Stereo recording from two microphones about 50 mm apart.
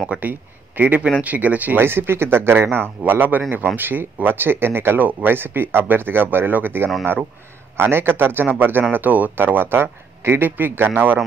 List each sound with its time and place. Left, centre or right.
0.2 s a man's voice: right
1.8 s speech: right
3.0 s a man's voice: right